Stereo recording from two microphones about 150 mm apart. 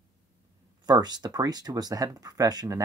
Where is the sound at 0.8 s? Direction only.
30° right (ahead or behind).